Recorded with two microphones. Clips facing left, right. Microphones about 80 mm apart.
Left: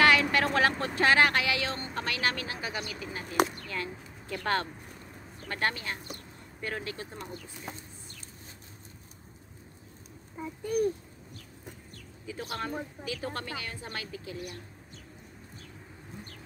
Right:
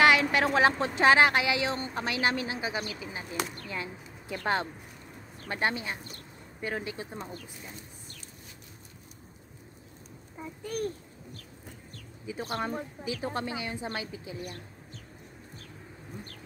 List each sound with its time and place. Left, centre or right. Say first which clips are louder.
0.0 s vehicle: right 1 dB; centre
0.6 s speech: right 2 dB; centre
10.6 s a child's voice: left 5 dB; centre
12.3 s speech: right 3 dB; centre